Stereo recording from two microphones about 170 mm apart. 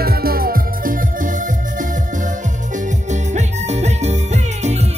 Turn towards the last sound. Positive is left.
turn(degrees=-40)  # may be behind; listen again after turning